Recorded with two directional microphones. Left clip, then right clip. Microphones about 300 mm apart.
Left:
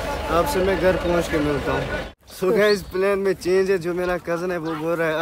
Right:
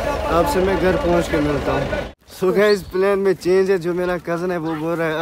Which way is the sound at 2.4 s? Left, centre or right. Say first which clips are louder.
Right 2 dB; centre.